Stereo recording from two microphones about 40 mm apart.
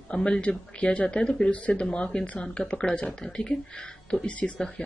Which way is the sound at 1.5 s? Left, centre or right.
Left.